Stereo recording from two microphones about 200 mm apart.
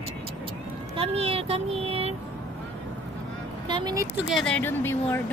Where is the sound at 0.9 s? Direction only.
30° right (ahead or behind).